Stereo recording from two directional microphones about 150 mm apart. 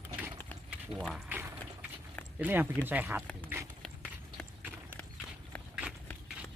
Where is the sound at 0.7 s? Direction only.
Centre (ahead or behind).